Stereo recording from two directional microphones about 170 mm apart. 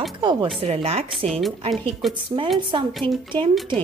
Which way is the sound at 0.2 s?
25° right (ahead or behind).